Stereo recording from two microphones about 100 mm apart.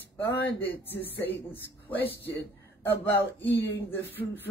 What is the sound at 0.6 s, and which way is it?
Speech, 20° left (ahead or behind).